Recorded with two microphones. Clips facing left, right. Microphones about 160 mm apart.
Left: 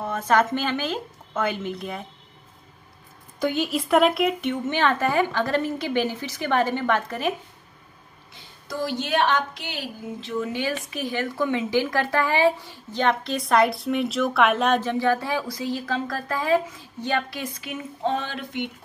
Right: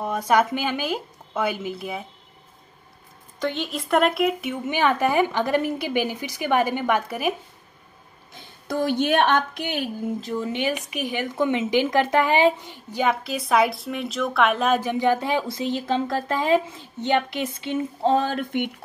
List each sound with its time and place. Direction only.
0.0 s a woman's voice: 15° right (ahead or behind)
3.3 s speech: 5° left (ahead or behind); by 7.3 s 10° right (ahead or behind)
8.6 s a woman's voice: 55° right (ahead or behind)
10.4 s speech: 20° right (ahead or behind); by 14.8 s centre (ahead or behind)
14.8 s speech: 15° right (ahead or behind); by 18.7 s 55° right (ahead or behind)